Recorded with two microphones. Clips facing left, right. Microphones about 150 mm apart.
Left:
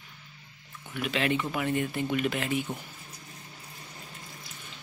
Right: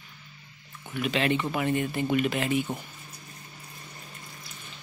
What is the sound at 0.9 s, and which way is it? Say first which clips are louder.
Speech: right 2 dB; centre (ahead or behind).